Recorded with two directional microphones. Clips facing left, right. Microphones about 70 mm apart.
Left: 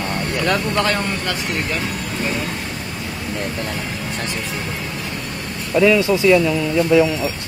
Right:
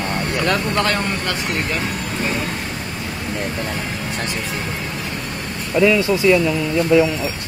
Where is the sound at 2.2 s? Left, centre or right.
Centre.